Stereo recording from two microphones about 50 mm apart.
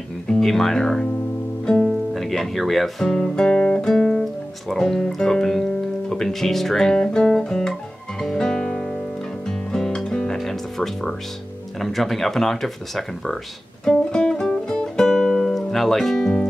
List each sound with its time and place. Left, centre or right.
0.3 s speech: centre
3.1 s guitar: centre
4.2 s speech: centre
8.2 s guitar: centre
9.5 s music: centre
10.3 s speech: centre
13.8 s guitar: centre